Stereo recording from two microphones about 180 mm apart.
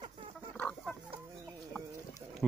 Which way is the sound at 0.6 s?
5° left (ahead or behind).